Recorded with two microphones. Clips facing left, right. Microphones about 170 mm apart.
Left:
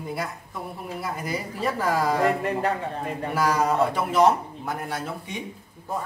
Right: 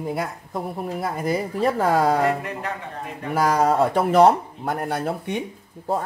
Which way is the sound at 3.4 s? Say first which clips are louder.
Right 4 dB; 55° right (ahead or behind).